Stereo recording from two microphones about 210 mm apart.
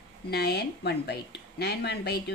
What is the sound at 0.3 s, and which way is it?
Speech, 50° left (ahead or behind).